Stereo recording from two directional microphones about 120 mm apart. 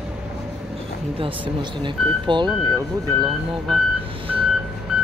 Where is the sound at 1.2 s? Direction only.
45° right (ahead or behind).